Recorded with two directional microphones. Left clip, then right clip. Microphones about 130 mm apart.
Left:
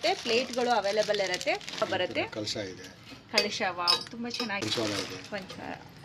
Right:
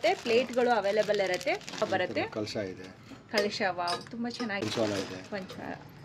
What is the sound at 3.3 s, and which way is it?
Speech, 15° right (ahead or behind).